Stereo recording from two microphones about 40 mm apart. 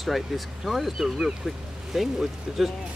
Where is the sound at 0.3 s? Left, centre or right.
Centre.